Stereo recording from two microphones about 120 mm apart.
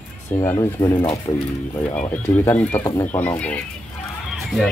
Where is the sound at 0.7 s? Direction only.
35° left (ahead or behind).